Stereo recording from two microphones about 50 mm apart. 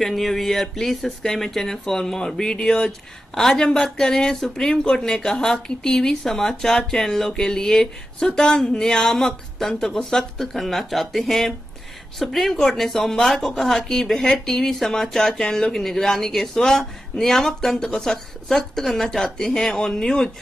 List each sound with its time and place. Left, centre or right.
0.0 s speech: centre